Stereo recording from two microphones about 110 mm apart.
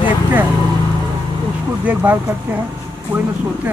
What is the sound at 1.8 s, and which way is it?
Speech, 15° right (ahead or behind).